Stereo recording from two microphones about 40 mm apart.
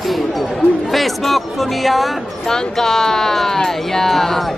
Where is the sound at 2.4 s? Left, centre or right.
Centre.